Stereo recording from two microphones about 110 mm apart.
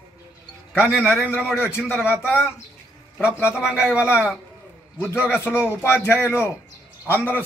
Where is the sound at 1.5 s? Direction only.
20° left (ahead or behind).